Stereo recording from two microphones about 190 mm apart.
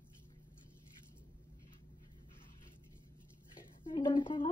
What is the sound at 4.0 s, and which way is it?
Speech, 25° left (ahead or behind).